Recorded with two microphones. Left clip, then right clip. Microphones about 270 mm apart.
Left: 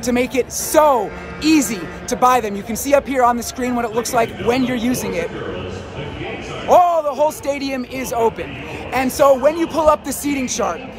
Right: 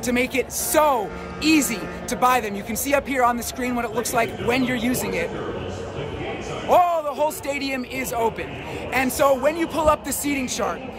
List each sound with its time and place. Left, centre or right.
0.0 s speech: centre
6.7 s speech: centre